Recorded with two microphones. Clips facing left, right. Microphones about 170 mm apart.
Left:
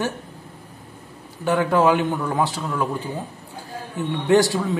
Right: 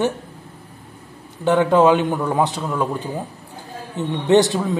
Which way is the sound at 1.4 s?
20° right (ahead or behind).